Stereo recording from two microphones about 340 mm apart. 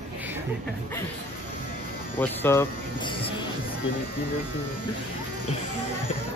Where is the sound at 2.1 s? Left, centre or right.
Centre.